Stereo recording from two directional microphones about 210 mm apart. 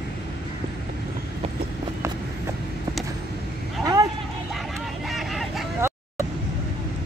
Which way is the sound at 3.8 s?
15° right (ahead or behind).